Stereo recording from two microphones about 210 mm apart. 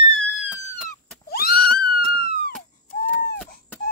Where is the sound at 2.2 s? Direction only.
45° left (ahead or behind).